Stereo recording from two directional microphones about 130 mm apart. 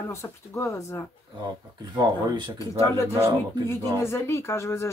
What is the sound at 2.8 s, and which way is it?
Speech, 20° left (ahead or behind).